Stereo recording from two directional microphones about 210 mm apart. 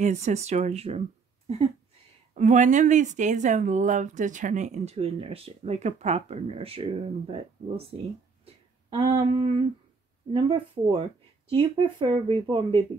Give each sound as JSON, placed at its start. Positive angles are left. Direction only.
{"t": 0.0, "sound": "speech", "side_deg": -35}
{"t": 2.3, "sound": "speech", "side_deg": -35}
{"t": 9.2, "sound": "speech", "side_deg": -25}